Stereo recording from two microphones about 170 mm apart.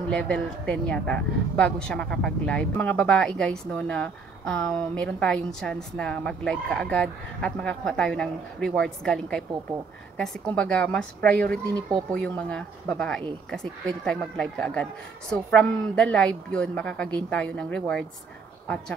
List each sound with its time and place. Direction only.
0.1 s a woman's voice: 5° left (ahead or behind)
11.6 s speech: 20° right (ahead or behind)
12.1 s a woman's voice: 5° left (ahead or behind)